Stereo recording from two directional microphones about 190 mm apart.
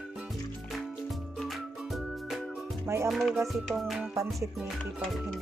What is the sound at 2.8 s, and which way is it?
Music, 15° right (ahead or behind).